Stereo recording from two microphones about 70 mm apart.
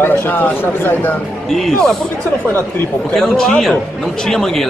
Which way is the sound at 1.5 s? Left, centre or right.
Centre.